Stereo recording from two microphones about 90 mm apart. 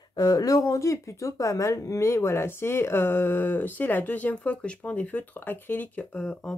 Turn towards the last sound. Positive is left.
turn(degrees=5)  # may be behind; listen again after turning